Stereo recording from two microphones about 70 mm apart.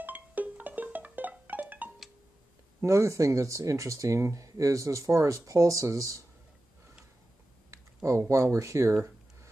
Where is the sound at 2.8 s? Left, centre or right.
Right.